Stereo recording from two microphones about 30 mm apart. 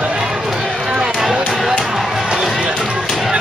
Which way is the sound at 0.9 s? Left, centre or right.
Right.